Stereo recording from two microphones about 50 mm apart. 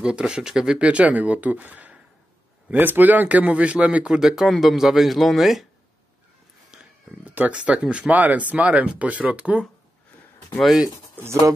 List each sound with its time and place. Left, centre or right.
0.0 s speech: centre
0.7 s a man's voice: right
4.1 s speech: centre
6.7 s a sound: right
7.3 s speech: right
10.6 s speech: centre
11.1 s speech: right